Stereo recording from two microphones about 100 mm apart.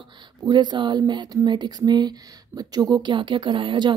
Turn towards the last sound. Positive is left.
turn(degrees=-55)  # may be behind; listen again after turning